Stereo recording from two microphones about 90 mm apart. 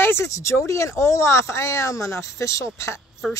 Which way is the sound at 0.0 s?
30° left (ahead or behind).